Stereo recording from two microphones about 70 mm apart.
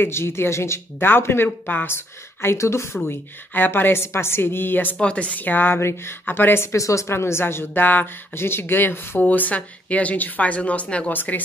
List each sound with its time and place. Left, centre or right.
0.0 s a woman's voice: left
3.1 s a woman's voice: left
4.9 s a woman's voice: centre; by 6.8 s left
6.8 s a woman's voice: left